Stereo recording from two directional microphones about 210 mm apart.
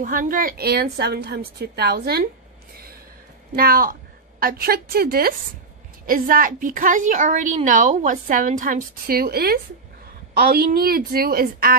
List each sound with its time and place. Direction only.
0.0 s a woman's voice: 40° right (ahead or behind)
3.5 s a woman's voice: 45° right (ahead or behind)